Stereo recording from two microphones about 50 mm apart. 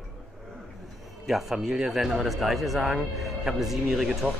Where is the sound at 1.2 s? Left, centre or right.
Centre.